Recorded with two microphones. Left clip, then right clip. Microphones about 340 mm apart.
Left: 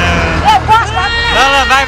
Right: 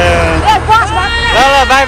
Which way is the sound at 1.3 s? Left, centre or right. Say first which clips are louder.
Right 2 dB; centre.